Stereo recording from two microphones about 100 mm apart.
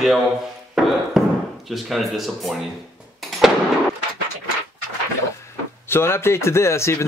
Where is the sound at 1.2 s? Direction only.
Centre (ahead or behind).